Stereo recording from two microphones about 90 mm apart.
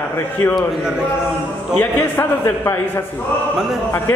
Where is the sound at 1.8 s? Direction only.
25° left (ahead or behind).